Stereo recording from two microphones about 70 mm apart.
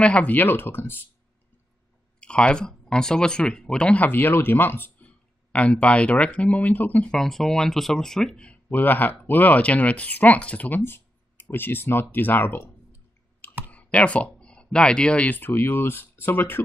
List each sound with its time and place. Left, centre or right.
0.0 s speech: centre
2.1 s speech: centre
4.0 s speech: left
7.1 s speech: centre
8.6 s speech: left
13.7 s speech: centre